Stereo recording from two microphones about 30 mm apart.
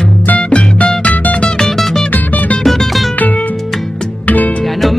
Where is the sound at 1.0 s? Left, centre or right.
Left.